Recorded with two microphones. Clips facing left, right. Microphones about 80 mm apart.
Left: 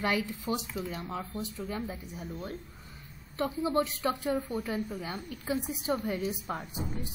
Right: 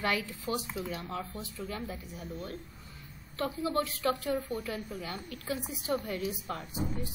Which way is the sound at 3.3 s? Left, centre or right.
Left.